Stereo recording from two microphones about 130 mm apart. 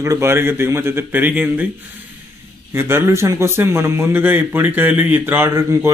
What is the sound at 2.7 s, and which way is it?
Speech, 20° right (ahead or behind).